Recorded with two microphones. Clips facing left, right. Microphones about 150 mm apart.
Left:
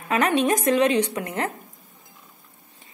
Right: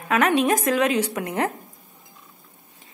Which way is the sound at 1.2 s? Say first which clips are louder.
Right 3 dB; 15° right (ahead or behind).